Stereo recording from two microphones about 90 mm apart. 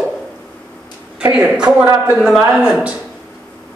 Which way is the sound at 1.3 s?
10° right (ahead or behind).